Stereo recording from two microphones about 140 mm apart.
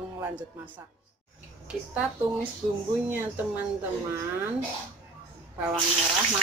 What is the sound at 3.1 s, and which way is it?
Speech, 15° right (ahead or behind).